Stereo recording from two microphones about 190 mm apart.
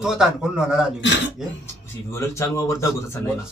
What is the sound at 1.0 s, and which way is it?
Speech, 70° left (ahead or behind).